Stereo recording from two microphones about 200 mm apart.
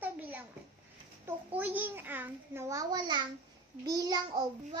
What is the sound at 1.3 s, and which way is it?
A child's voice, 10° right (ahead or behind).